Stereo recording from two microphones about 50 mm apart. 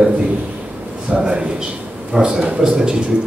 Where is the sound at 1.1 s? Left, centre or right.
Right.